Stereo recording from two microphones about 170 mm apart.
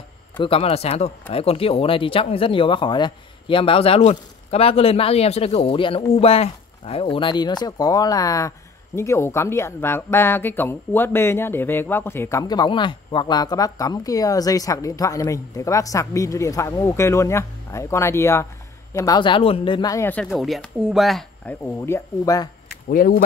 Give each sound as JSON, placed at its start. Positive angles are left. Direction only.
{"t": 0.4, "sound": "speech", "side_deg": 35}
{"t": 21.7, "sound": "speech", "side_deg": 15}
{"t": 22.8, "sound": "speech", "side_deg": 60}